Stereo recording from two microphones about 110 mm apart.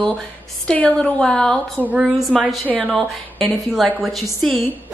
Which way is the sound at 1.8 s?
15° right (ahead or behind).